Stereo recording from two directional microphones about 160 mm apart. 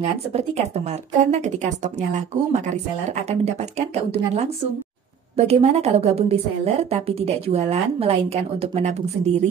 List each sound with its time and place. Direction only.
0.3 s speech: 40° right (ahead or behind)
5.4 s a woman's voice: 40° right (ahead or behind)